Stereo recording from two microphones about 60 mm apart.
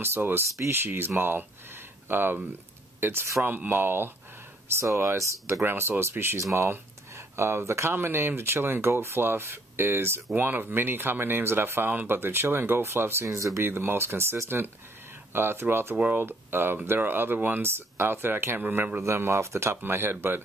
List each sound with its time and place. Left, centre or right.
0.0 s speech: right
3.4 s speech: right
4.6 s speech: right
5.6 s speech: right
11.9 s speech: right
12.2 s speech: right
19.0 s speech: right